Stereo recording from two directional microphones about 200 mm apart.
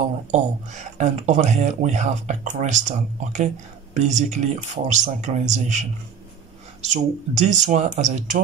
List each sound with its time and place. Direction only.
0.3 s speech: 35° right (ahead or behind)